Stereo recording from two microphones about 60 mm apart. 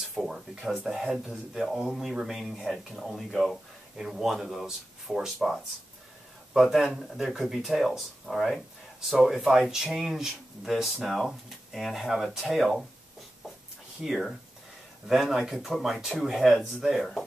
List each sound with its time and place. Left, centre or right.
0.0 s speech: centre
14.0 s speech: centre